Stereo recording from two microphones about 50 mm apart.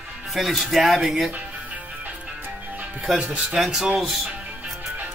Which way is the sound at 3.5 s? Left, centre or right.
Centre.